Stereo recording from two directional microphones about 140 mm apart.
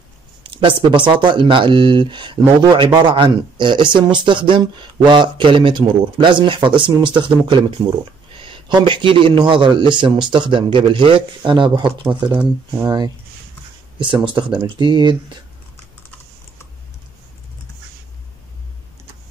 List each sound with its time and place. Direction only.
0.4 s speech: 40° right (ahead or behind)
12.3 s speech: 15° right (ahead or behind)
13.9 s speech: 35° right (ahead or behind)